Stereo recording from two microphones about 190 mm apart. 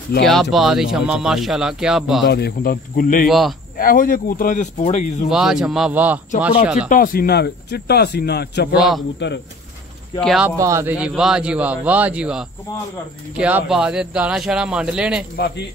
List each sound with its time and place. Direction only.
0.2 s speech: centre (ahead or behind)
2.2 s speech: 60° left (ahead or behind)
3.3 s speech: centre (ahead or behind)
3.7 s speech: 50° left (ahead or behind)
5.3 s a man's voice: 5° right (ahead or behind)
6.9 s speech: 45° left (ahead or behind)
8.7 s speech: centre (ahead or behind)
10.2 s speech: centre (ahead or behind)
10.6 s a man's voice: 15° right (ahead or behind)
15.3 s speech: 55° left (ahead or behind)